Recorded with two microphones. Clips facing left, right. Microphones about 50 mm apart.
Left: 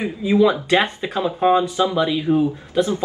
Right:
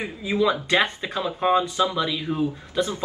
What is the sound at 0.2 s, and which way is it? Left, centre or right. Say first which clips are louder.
Speech: left 6 dB; centre.